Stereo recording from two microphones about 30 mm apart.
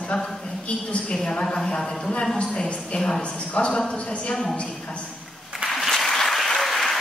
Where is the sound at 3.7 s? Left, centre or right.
Left.